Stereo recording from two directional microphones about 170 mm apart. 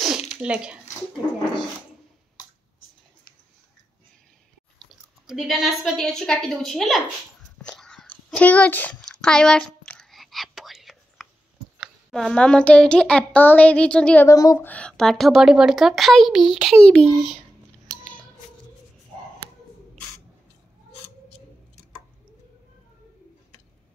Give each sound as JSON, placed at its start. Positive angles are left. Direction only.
{"t": 0.3, "sound": "speech", "side_deg": -5}
{"t": 4.7, "sound": "speech", "side_deg": 0}
{"t": 7.5, "sound": "whispering", "side_deg": 5}
{"t": 11.8, "sound": "speech", "side_deg": 0}
{"t": 14.2, "sound": "speech", "side_deg": 20}
{"t": 14.7, "sound": "a woman's voice", "side_deg": 5}